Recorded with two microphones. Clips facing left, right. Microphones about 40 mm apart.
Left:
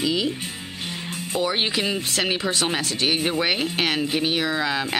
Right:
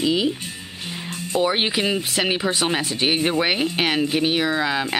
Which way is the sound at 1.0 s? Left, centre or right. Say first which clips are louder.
Right 4 dB; centre.